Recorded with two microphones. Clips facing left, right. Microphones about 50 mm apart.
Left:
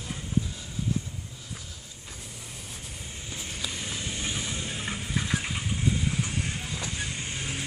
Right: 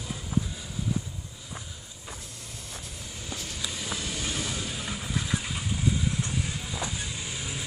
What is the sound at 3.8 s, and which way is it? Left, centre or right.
Vehicle, centre.